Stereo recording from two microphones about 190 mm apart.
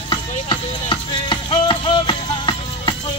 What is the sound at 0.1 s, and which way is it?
Music, 25° left (ahead or behind).